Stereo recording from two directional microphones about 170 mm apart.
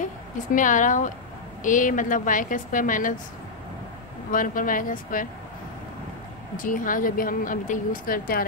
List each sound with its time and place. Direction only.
0.0 s a woman's voice: 50° left (ahead or behind)
4.3 s a woman's voice: 50° left (ahead or behind)
6.5 s a woman's voice: 50° left (ahead or behind)